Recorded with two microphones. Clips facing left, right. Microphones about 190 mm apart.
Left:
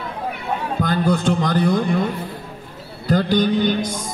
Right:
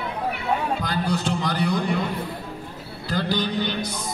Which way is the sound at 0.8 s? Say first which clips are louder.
Left 6 dB; 50° left (ahead or behind).